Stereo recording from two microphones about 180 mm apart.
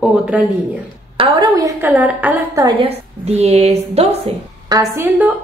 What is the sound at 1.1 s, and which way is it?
Speech, 25° right (ahead or behind).